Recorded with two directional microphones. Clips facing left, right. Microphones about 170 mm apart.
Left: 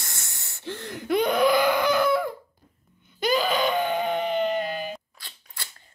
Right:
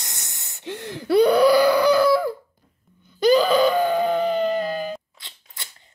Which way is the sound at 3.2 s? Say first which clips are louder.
Right 7 dB; 40° right (ahead or behind).